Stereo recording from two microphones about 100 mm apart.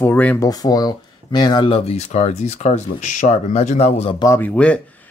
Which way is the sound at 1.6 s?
80° left.